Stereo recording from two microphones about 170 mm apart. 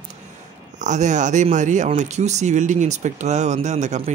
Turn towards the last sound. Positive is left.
turn(degrees=-40)  # may be behind; listen again after turning